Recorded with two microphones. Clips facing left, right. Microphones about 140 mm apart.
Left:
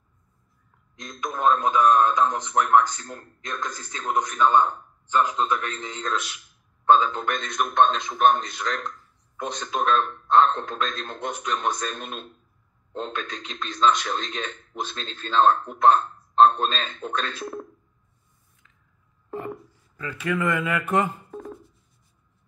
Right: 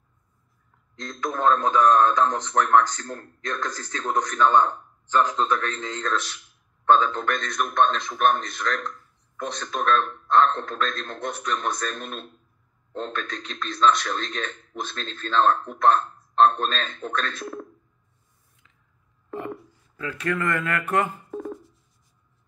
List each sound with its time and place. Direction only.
0.9 s a man's voice: 15° left (ahead or behind)
20.0 s a man's voice: centre (ahead or behind)